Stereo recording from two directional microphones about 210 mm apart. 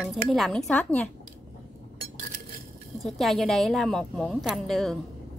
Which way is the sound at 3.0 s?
Centre (ahead or behind).